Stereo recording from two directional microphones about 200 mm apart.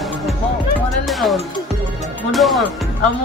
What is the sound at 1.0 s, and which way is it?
Music, centre (ahead or behind).